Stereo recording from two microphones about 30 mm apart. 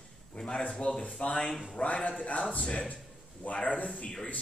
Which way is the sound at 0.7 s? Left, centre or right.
Left.